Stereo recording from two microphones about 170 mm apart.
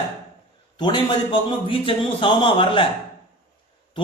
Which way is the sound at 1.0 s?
30° left (ahead or behind).